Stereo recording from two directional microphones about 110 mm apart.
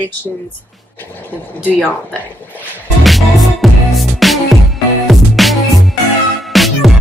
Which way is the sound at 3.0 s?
Centre (ahead or behind).